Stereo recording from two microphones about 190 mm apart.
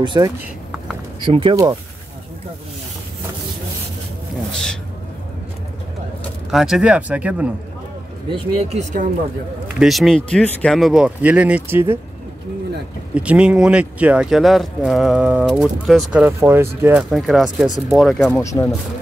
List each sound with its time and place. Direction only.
0.0 s speech: 25° right (ahead or behind)
6.5 s speech: 5° right (ahead or behind)
8.3 s speech: 30° right (ahead or behind)
9.8 s speech: centre (ahead or behind)
13.1 s speech: 5° right (ahead or behind)
17.1 s speech: centre (ahead or behind)
18.4 s speech: 15° left (ahead or behind)